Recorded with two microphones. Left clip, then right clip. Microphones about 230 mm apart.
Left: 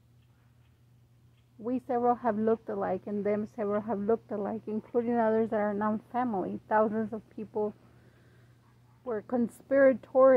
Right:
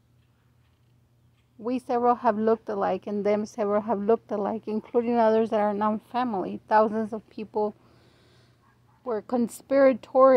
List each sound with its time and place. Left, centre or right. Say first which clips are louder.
1.6 s a woman's voice: right 4 dB; right
9.0 s a woman's voice: right 4 dB; right